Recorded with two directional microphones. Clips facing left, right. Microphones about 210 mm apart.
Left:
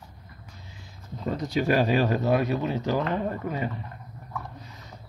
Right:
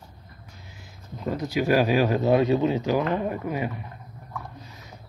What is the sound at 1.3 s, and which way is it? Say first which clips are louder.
Speech: right 2 dB; 5° right (ahead or behind).